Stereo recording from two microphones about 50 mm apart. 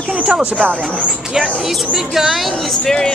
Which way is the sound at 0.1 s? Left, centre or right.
Right.